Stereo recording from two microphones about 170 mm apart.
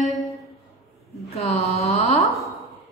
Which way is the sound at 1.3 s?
35° left (ahead or behind).